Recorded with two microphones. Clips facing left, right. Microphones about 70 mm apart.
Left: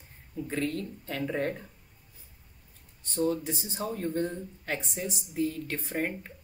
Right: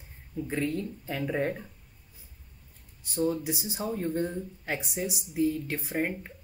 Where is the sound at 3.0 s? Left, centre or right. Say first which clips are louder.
Even; centre.